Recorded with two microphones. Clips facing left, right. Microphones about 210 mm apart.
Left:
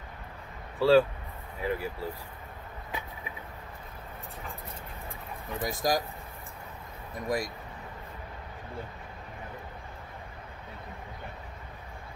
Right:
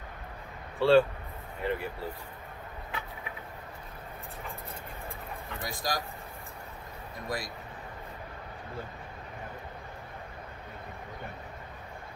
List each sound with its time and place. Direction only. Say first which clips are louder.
0.7 s speech: even; 5° left (ahead or behind)
5.7 s speech: left 6 dB; 45° left (ahead or behind)
7.2 s speech: left 5 dB; 45° left (ahead or behind)